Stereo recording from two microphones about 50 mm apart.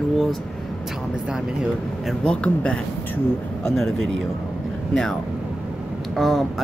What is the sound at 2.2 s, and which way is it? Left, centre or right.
Speech, centre.